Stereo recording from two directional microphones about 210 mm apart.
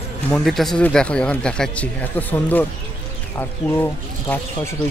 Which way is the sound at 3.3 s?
10° left (ahead or behind).